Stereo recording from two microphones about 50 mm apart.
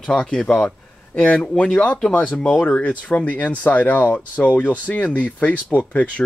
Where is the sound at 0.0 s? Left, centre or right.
Centre.